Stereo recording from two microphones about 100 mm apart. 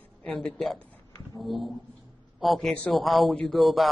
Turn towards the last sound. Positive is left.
turn(degrees=0)  # may be behind; listen again after turning